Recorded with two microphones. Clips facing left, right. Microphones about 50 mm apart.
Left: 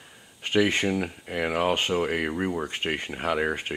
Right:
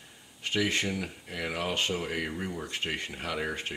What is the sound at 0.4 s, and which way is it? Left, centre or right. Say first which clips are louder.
Speech: left 6 dB; left.